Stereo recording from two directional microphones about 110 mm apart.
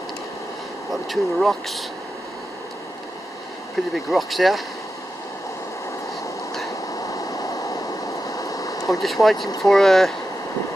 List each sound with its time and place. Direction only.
1.0 s speech: centre (ahead or behind)
3.9 s speech: centre (ahead or behind)
6.9 s a sound: 30° left (ahead or behind)
9.0 s speech: centre (ahead or behind)